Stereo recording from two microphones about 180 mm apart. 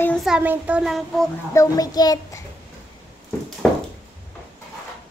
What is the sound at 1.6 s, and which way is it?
Speech, 20° left (ahead or behind).